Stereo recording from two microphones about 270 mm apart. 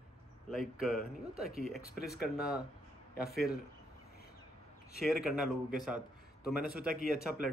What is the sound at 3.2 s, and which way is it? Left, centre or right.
Speech, left.